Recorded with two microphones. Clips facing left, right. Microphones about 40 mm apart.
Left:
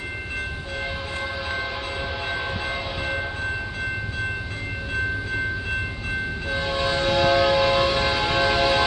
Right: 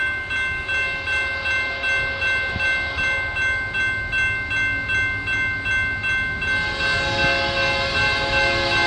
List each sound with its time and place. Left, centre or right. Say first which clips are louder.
1.5 s train: right 7 dB; right
4.9 s train: right 4 dB; right
6.5 s train: right 1 dB; centre